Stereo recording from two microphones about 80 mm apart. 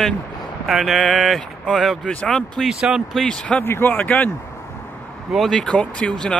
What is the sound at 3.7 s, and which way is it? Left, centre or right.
Speech, left.